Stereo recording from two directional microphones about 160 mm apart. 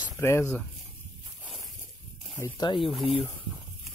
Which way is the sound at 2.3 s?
15° left (ahead or behind).